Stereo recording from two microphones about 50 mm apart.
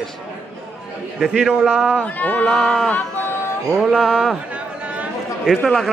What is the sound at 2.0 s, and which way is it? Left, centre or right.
Speech, left.